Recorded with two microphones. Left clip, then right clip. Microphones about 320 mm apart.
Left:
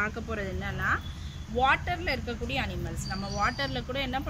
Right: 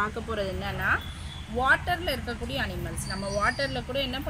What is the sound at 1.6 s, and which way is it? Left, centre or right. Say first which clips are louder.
Speech: right 2 dB; centre.